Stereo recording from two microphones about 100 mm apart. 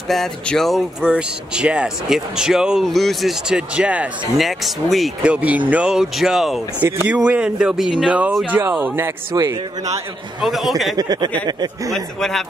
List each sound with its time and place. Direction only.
0.1 s speech: 5° left (ahead or behind)
1.0 s speech: 10° right (ahead or behind)
4.4 s speech: centre (ahead or behind)
5.2 s speech: 15° right (ahead or behind)
6.8 s speech: 15° right (ahead or behind)
8.5 s speech: 25° right (ahead or behind)
9.3 s a man's voice: 45° right (ahead or behind)
10.4 s speech: centre (ahead or behind)
11.0 s a man's voice: 45° right (ahead or behind)
11.9 s speech: 5° left (ahead or behind)